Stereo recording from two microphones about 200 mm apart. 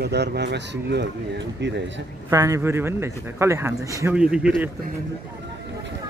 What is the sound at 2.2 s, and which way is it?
A man's voice, 15° right (ahead or behind).